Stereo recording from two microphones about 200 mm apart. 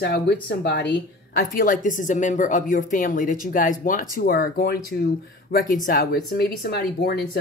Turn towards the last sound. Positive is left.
turn(degrees=55)  # may be behind; listen again after turning